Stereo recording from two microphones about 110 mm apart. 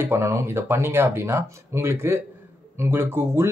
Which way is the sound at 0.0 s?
25° right (ahead or behind).